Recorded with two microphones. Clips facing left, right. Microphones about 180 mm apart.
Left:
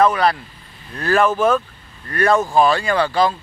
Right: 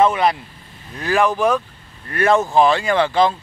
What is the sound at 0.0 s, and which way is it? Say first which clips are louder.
Speech: even; 20° right (ahead or behind).